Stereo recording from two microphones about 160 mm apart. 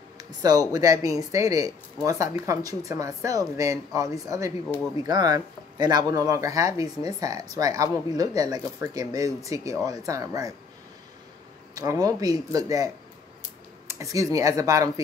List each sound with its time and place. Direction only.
0.2 s speech: 25° right (ahead or behind)
11.7 s speech: 20° right (ahead or behind)